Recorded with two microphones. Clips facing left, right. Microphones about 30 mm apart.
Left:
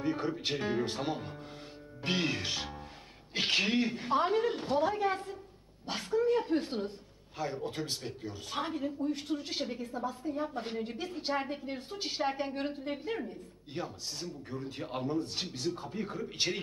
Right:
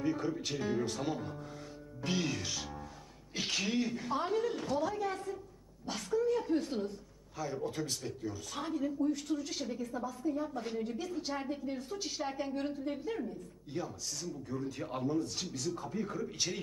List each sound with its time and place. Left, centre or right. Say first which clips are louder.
0.0 s a woman's voice: left 1 dB; left
2.0 s music: left 3 dB; left
3.3 s a woman's voice: left 5 dB; left